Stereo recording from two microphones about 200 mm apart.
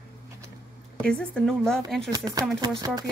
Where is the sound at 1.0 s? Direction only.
5° left (ahead or behind).